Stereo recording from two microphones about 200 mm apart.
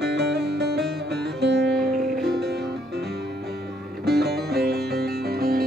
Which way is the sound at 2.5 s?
55° right (ahead or behind).